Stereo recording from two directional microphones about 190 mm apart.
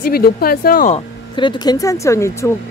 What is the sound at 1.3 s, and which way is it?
A woman's voice, 25° left (ahead or behind).